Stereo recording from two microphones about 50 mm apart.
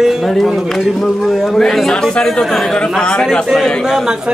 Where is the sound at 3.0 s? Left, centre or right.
Centre.